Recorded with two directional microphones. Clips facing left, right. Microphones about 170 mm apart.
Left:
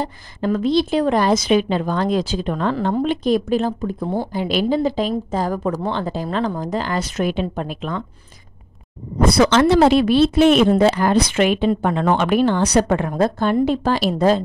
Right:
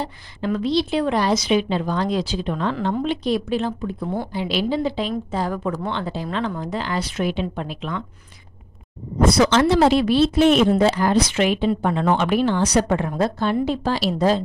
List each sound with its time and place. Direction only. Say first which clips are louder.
0.0 s a woman's voice: left 3 dB; 45° left (ahead or behind)
9.3 s speech: left 3 dB; 60° left (ahead or behind)